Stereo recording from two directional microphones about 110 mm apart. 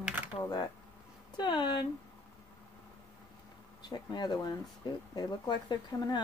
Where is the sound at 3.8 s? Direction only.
40° left (ahead or behind).